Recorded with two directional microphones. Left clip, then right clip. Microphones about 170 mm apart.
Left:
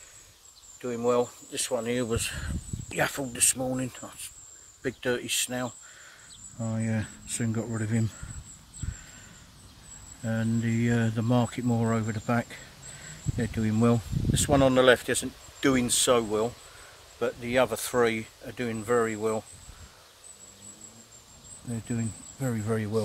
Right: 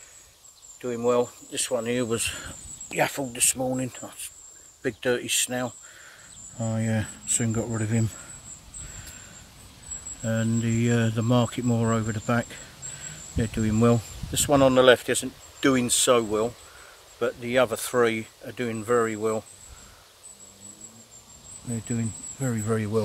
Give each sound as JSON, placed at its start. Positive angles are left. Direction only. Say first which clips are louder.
{"t": 0.7, "sound": "speech", "louder": "right 2 dB", "side_deg": -10}
{"t": 10.2, "sound": "speech", "louder": "right 3 dB", "side_deg": -15}
{"t": 21.6, "sound": "speech", "louder": "right 3 dB", "side_deg": 0}